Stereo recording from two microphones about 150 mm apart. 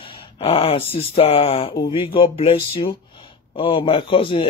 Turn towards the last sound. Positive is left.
turn(degrees=35)  # may be behind; listen again after turning